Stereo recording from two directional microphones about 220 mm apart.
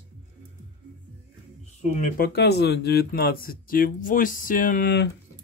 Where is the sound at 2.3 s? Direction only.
50° left (ahead or behind).